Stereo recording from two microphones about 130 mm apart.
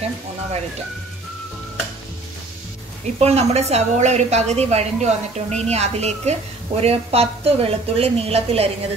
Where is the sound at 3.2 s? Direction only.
55° right (ahead or behind).